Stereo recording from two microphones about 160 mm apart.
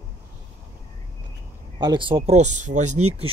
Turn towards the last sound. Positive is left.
turn(degrees=-45)  # may be behind; listen again after turning